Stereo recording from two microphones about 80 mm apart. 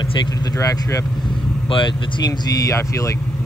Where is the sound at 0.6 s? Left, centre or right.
Left.